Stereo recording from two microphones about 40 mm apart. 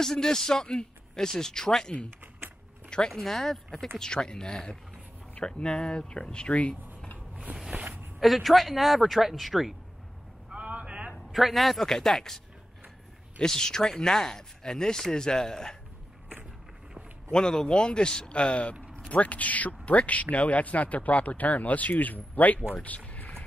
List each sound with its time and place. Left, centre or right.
0.0 s speech: centre
3.1 s speech: centre
4.0 s speech: centre
7.5 s a sound: right
8.2 s speech: centre
10.5 s a sound: right
11.3 s speech: centre
13.4 s speech: centre
17.3 s speech: centre; by 22.6 s left
22.8 s a sound: left